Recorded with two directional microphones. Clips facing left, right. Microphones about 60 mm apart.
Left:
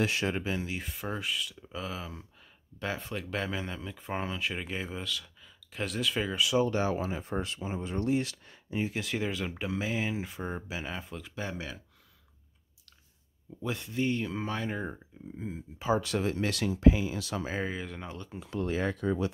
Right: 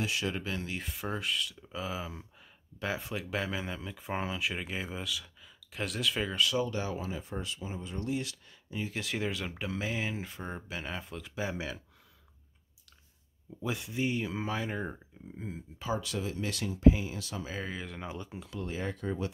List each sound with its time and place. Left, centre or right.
0.0 s speech: left
0.4 s speech: centre
6.6 s speech: left
8.6 s speech: left
8.9 s speech: centre
13.6 s speech: centre
16.0 s speech: left
17.6 s speech: centre
18.0 s speech: centre
18.7 s speech: left